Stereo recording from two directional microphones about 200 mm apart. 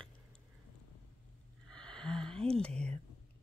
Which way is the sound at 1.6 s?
5° left (ahead or behind).